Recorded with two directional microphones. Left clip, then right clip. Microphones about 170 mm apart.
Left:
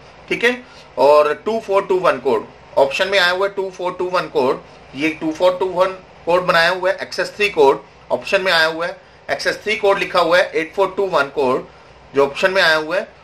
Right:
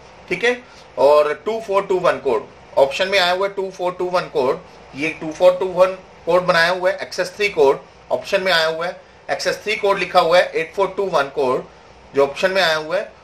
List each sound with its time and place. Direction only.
0.9 s speech: 20° left (ahead or behind)